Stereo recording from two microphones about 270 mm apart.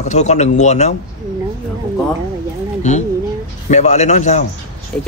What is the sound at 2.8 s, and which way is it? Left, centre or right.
A man's voice, left.